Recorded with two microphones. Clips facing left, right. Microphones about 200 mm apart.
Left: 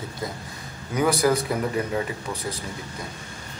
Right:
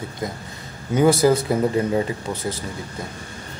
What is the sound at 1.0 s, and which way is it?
A man's voice, 25° right (ahead or behind).